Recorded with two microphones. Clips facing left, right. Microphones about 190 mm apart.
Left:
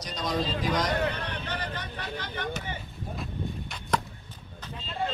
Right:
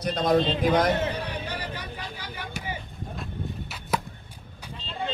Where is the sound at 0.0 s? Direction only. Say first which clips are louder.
Right 8 dB; 55° right (ahead or behind).